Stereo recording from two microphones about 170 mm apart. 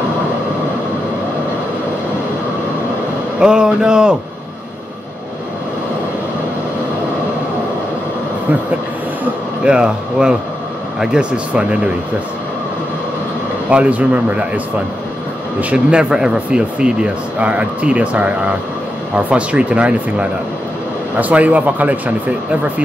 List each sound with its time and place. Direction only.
3.3 s speech: 5° right (ahead or behind)
9.2 s speech: 5° right (ahead or behind)
13.7 s speech: 10° right (ahead or behind)
15.7 s speech: 5° right (ahead or behind)